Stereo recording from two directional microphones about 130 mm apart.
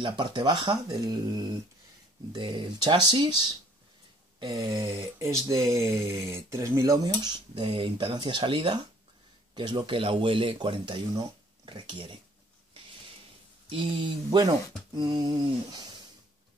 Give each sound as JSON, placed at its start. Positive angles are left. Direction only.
{"t": 0.0, "sound": "speech", "side_deg": -35}
{"t": 2.3, "sound": "speech", "side_deg": -35}
{"t": 7.5, "sound": "speech", "side_deg": -45}
{"t": 13.7, "sound": "speech", "side_deg": -40}